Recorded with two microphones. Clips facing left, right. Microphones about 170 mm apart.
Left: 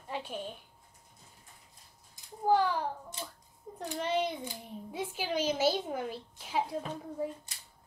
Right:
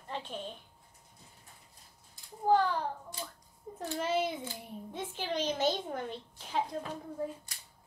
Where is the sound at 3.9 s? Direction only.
5° right (ahead or behind).